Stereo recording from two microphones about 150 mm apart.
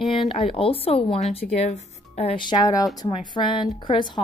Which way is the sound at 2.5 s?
25° left (ahead or behind).